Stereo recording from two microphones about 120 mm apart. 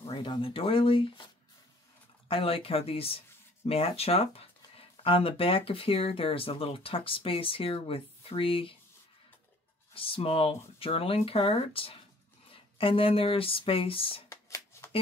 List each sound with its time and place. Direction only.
0.0 s speech: 45° left (ahead or behind)
2.2 s speech: 50° left (ahead or behind)
9.9 s speech: 50° left (ahead or behind)
14.3 s shuffling cards: 25° left (ahead or behind)